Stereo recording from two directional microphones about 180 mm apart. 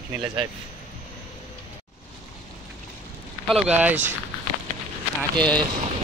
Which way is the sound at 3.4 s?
5° right (ahead or behind).